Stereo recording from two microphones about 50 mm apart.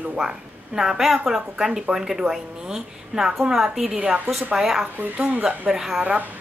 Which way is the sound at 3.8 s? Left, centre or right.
Centre.